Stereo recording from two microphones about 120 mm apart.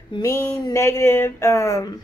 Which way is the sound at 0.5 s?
25° left (ahead or behind).